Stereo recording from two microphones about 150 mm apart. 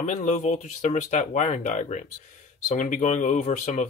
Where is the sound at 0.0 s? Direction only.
50° left (ahead or behind).